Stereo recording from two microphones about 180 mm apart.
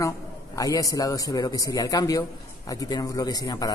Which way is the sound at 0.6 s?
20° left (ahead or behind).